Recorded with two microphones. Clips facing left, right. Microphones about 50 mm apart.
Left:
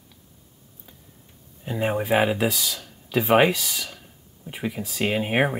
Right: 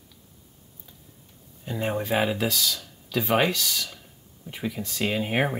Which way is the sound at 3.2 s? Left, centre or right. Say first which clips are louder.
Left 5 dB; centre.